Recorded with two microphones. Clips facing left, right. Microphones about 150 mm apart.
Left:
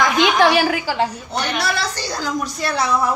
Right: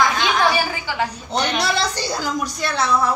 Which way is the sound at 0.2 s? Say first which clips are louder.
Left 4 dB; 85° left.